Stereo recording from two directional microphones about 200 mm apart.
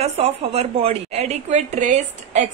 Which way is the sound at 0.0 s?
30° right (ahead or behind).